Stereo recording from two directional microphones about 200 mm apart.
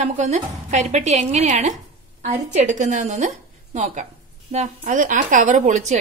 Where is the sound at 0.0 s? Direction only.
35° right (ahead or behind).